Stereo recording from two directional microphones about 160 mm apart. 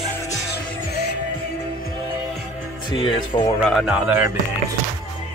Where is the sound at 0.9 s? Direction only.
90° left.